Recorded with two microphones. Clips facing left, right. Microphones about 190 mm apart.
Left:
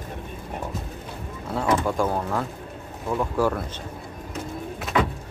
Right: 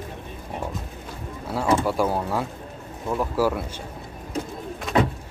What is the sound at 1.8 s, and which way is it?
Speech, 5° right (ahead or behind).